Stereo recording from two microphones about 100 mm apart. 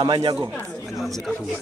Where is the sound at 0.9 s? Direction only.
Centre (ahead or behind).